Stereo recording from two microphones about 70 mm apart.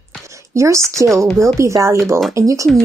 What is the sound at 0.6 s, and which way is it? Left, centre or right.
Speech, right.